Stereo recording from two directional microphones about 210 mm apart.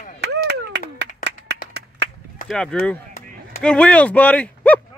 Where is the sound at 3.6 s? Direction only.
5° left (ahead or behind).